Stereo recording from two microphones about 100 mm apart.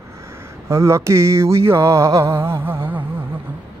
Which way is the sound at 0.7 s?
30° right (ahead or behind).